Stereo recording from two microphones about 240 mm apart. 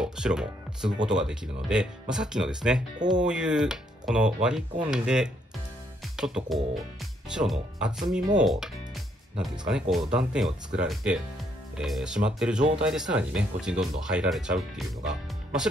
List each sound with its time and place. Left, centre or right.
0.0 s music: centre
1.0 s speech: centre
12.5 s speech: right
12.8 s speech: centre